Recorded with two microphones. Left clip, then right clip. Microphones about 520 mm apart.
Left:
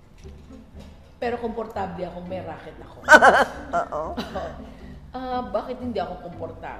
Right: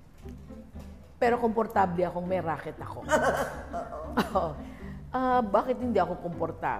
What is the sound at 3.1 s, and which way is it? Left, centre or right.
Speech, left.